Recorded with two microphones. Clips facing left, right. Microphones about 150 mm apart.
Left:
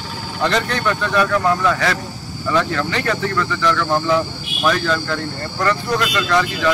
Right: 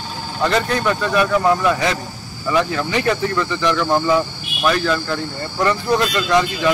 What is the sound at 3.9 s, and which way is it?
Speech, 5° right (ahead or behind).